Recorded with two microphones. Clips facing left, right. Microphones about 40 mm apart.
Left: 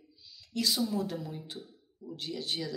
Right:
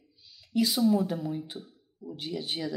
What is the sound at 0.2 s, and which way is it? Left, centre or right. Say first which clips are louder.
Speech: right 6 dB; centre.